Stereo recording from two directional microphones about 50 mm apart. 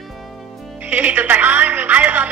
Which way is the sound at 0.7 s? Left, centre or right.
Right.